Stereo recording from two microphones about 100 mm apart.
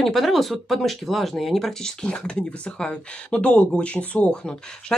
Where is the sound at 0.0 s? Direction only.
Centre (ahead or behind).